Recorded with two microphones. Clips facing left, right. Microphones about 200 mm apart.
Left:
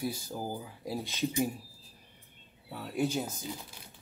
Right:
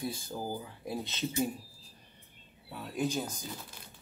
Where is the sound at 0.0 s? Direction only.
10° left (ahead or behind).